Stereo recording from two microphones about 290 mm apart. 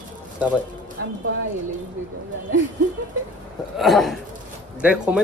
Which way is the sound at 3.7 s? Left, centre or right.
Centre.